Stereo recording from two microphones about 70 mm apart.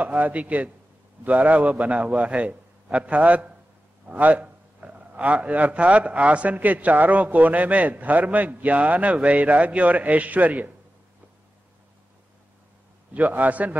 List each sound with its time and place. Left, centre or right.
0.0 s a man's voice: centre
13.1 s a man's voice: right